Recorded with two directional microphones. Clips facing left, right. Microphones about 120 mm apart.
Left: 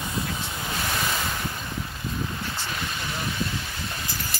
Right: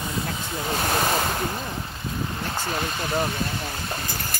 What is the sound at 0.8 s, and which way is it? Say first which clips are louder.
Ocean: right 6 dB; 55° right (ahead or behind).